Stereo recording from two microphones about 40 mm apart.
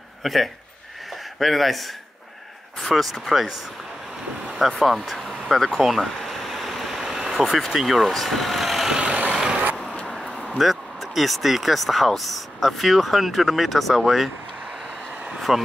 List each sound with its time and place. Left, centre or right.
0.2 s a man's voice: centre
4.7 s speech: centre
5.8 s a sound: centre
7.7 s speech: centre
8.8 s vehicle: right
10.2 s vehicle: left
10.6 s speech: centre
15.3 s vehicle: centre